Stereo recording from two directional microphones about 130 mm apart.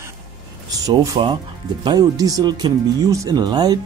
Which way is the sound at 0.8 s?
25° right (ahead or behind).